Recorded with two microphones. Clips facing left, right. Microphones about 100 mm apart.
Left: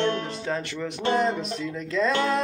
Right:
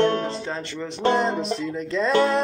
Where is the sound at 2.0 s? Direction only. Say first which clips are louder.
Right 3 dB; 40° right (ahead or behind).